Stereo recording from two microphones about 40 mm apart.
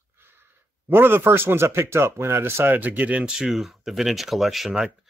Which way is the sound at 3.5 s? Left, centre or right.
Centre.